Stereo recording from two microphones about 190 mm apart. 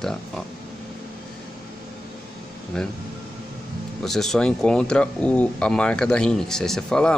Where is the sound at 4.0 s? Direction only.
Centre (ahead or behind).